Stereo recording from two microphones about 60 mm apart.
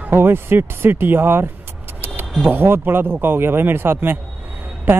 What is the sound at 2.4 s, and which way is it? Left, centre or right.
A man's voice, right.